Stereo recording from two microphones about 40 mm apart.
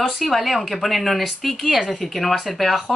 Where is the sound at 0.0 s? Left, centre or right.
Centre.